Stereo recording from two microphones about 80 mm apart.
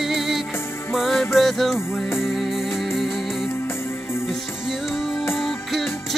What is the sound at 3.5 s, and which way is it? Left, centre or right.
Music, left.